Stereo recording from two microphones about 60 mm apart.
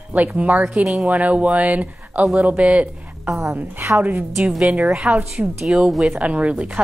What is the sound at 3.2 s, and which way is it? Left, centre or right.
Speech, right.